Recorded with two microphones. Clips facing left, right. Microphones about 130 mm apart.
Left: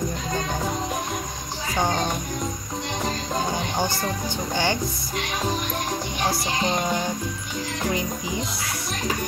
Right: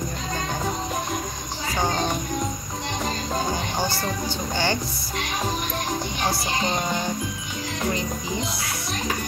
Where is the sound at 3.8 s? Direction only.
15° left (ahead or behind).